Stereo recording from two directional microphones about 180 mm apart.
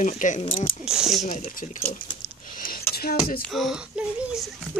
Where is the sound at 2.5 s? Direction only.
50° left (ahead or behind).